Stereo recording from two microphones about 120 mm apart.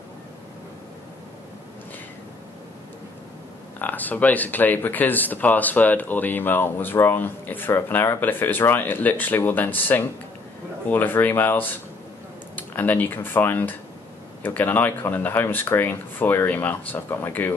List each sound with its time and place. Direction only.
3.8 s speech: 15° left (ahead or behind)